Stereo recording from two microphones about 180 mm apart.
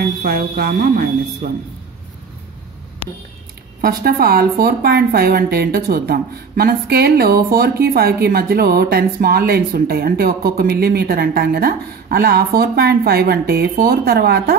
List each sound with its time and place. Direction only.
0.2 s a woman's voice: 60° right (ahead or behind)
3.8 s a woman's voice: 55° right (ahead or behind)